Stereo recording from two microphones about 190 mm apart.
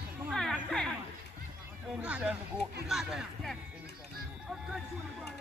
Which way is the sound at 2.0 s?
5° right (ahead or behind).